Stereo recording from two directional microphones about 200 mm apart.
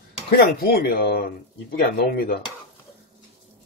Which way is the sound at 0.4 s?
50° left (ahead or behind).